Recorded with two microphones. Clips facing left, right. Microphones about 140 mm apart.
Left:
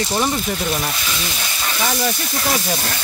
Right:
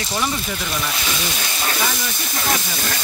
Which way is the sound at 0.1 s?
35° left (ahead or behind).